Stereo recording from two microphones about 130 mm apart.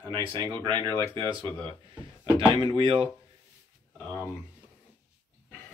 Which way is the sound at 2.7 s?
40° right (ahead or behind).